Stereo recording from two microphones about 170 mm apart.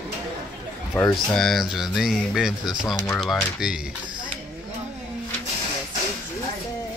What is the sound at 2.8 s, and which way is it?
Speech, 20° left (ahead or behind).